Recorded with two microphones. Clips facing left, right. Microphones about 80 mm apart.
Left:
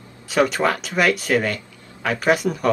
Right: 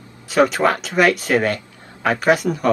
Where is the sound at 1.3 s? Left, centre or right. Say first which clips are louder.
Right 2 dB; right.